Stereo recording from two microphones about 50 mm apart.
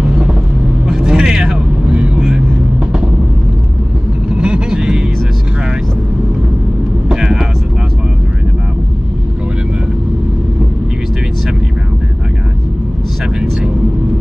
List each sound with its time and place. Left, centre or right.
0.8 s vehicle: centre
4.4 s vehicle: right
7.1 s vehicle: centre